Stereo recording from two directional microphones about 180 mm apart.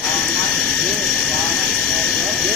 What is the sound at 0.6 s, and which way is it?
Vehicle, centre (ahead or behind).